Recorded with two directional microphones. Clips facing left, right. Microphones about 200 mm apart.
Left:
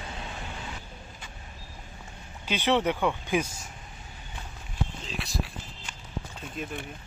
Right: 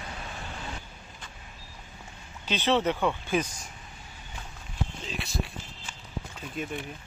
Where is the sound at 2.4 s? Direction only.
15° left (ahead or behind).